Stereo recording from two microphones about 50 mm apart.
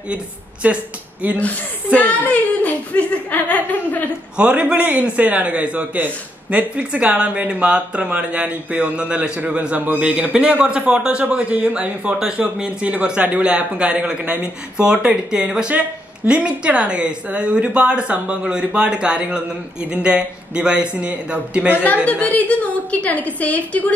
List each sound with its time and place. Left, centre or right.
0.1 s a man's voice: right
2.0 s a woman's voice: left
4.4 s a man's voice: right
21.7 s a woman's voice: left